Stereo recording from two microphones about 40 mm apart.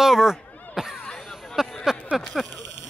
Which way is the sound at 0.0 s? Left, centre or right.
Centre.